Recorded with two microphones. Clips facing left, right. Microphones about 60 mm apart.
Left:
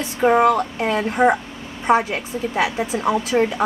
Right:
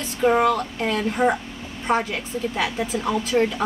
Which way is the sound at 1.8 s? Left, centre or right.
Centre.